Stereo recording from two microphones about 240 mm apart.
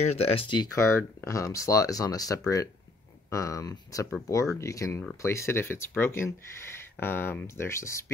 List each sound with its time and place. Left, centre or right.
0.1 s speech: left